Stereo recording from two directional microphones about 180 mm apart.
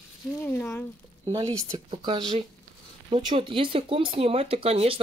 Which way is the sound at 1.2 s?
15° right (ahead or behind).